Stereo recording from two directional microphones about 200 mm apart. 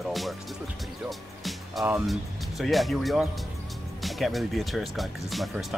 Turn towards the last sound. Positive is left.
turn(degrees=0)  # may be behind; listen again after turning